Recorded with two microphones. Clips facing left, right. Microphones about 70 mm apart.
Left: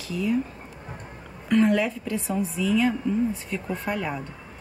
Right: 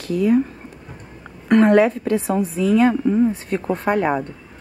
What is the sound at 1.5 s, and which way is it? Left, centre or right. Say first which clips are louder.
Speech: right 8 dB; right.